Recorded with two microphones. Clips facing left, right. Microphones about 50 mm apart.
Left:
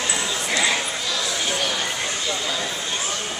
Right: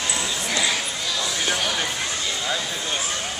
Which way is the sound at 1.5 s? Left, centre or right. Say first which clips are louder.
Right 1 dB; centre.